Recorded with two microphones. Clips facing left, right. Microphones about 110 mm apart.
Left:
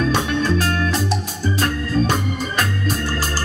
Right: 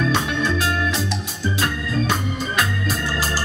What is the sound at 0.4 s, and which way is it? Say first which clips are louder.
Music: left 2 dB; 45° left (ahead or behind).